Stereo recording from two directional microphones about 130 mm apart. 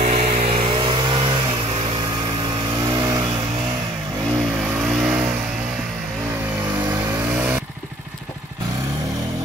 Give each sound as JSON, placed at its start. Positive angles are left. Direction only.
{"t": 0.0, "sound": "vehicle", "side_deg": -50}
{"t": 2.9, "sound": "vehicle", "side_deg": -30}
{"t": 5.0, "sound": "vehicle", "side_deg": -10}